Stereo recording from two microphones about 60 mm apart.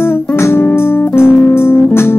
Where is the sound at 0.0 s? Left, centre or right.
Left.